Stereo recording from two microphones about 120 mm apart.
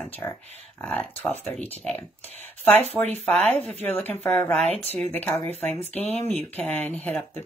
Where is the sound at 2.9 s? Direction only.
65° right (ahead or behind).